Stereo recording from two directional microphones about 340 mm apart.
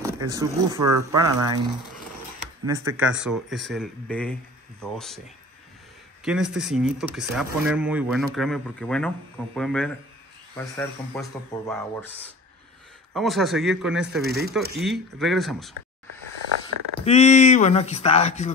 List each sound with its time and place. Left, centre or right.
0.0 s speech: centre
6.2 s speech: centre
13.1 s speech: centre
14.2 s speech: right
14.8 s speech: centre
16.6 s speech: centre